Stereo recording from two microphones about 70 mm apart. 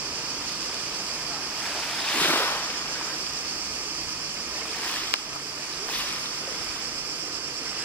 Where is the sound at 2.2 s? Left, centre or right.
Left.